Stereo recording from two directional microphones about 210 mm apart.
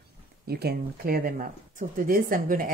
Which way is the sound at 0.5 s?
50° right (ahead or behind).